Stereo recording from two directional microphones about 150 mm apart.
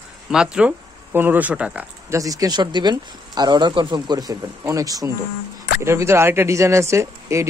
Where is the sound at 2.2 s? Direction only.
25° right (ahead or behind).